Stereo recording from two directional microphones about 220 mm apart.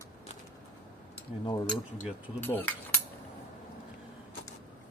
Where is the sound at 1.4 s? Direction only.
20° left (ahead or behind).